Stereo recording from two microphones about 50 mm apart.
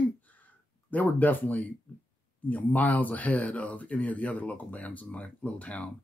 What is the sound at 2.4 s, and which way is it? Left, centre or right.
Speech, left.